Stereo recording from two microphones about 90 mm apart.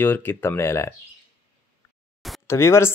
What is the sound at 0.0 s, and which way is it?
Speech, 20° left (ahead or behind).